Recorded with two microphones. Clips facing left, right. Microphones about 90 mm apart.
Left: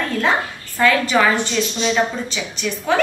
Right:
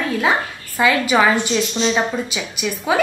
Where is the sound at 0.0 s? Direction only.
5° right (ahead or behind).